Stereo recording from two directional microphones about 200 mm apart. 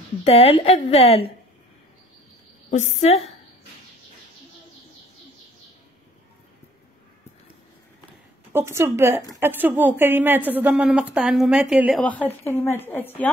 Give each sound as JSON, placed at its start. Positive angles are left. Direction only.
{"t": 0.2, "sound": "a woman's voice", "side_deg": 30}
{"t": 2.7, "sound": "a woman's voice", "side_deg": 35}
{"t": 8.5, "sound": "a woman's voice", "side_deg": -15}
{"t": 12.3, "sound": "a woman's voice", "side_deg": 10}